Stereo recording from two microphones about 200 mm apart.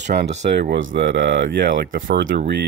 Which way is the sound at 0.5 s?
60° right (ahead or behind).